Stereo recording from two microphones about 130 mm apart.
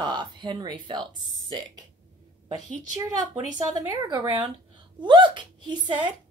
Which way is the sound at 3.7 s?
35° right (ahead or behind).